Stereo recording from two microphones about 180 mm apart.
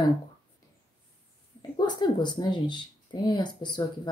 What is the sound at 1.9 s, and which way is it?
Speech, 25° left (ahead or behind).